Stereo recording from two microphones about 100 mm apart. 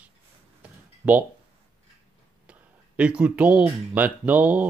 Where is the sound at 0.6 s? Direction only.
15° right (ahead or behind).